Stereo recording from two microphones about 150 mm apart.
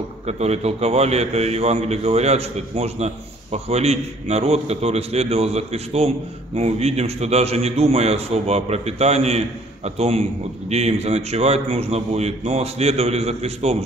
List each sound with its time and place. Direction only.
0.3 s a man's voice: 45° right (ahead or behind)